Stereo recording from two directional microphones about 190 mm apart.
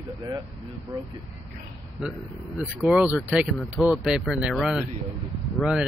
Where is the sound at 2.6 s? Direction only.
5° right (ahead or behind).